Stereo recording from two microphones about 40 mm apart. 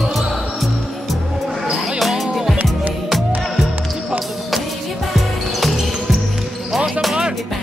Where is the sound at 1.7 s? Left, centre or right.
Centre.